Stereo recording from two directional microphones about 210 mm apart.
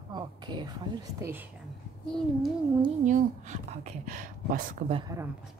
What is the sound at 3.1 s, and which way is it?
A woman's voice, 35° right (ahead or behind).